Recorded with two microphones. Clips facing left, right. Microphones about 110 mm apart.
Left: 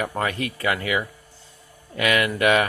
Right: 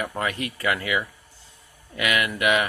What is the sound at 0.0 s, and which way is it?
Speech, 35° left (ahead or behind).